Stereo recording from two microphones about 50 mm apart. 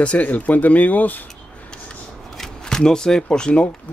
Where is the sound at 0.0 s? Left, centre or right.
Left.